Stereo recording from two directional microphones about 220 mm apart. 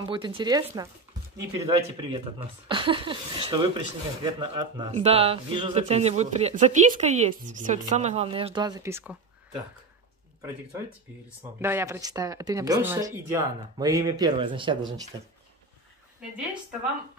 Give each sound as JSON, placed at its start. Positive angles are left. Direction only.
{"t": 0.0, "sound": "speech", "side_deg": -20}
{"t": 11.6, "sound": "speech", "side_deg": -10}